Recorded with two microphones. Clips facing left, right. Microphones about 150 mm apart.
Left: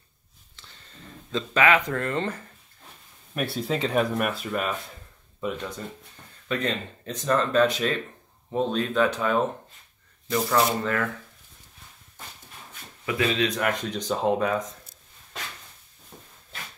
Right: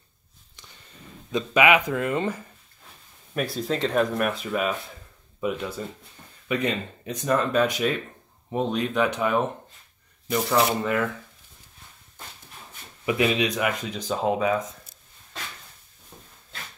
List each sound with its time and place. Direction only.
0.6 s a sound: 15° right (ahead or behind)
1.3 s speech: 15° right (ahead or behind)
3.3 s speech: 5° left (ahead or behind); by 11.1 s 15° right (ahead or behind)
13.0 s speech: 15° right (ahead or behind)